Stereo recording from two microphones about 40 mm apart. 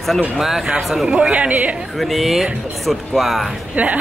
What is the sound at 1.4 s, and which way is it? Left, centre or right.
Speech, right.